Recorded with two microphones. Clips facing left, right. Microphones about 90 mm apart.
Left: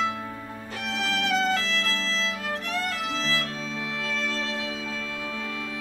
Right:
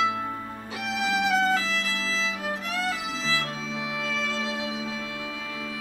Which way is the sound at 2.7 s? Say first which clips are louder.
Even; centre (ahead or behind).